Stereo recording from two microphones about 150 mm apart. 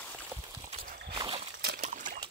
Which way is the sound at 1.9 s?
60° right (ahead or behind).